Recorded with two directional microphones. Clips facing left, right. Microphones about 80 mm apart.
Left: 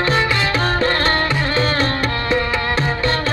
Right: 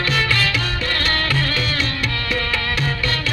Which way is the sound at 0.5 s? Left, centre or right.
Left.